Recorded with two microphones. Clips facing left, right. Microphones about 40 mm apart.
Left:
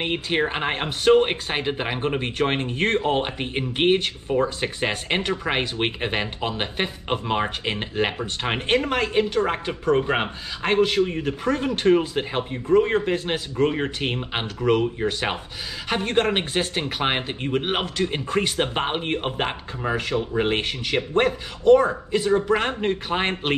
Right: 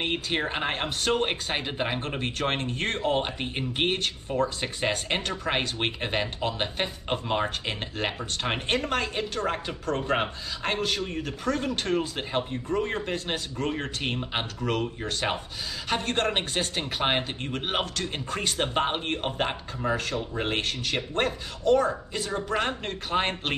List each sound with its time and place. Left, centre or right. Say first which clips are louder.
0.0 s speech: left 5 dB; centre